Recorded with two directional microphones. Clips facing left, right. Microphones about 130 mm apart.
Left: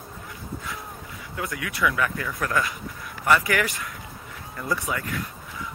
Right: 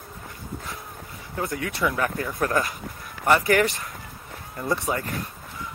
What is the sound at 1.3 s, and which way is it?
Speech, 30° right (ahead or behind).